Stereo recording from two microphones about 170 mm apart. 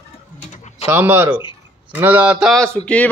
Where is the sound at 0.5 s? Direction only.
45° left (ahead or behind).